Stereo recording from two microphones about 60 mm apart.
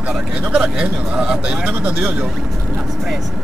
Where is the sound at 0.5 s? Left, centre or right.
Centre.